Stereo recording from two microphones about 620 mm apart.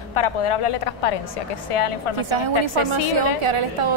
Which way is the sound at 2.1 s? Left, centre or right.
Right.